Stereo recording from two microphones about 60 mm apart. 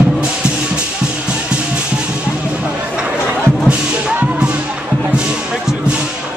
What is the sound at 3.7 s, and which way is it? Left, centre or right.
Music, centre.